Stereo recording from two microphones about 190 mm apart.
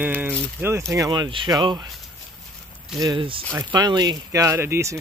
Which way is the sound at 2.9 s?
25° right (ahead or behind).